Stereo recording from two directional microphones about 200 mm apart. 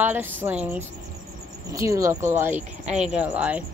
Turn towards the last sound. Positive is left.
turn(degrees=-5)  # may be behind; listen again after turning